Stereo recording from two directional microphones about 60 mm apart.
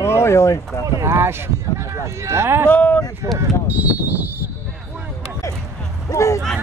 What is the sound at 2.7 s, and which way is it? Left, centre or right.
Speech, left.